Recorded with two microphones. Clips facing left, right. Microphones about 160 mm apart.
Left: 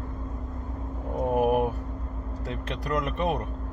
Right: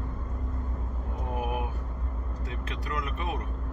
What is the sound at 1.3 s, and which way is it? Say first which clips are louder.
Vehicle: left 10 dB; 50° left (ahead or behind).